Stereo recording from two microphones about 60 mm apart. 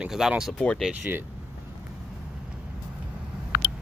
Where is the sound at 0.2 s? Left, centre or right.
Centre.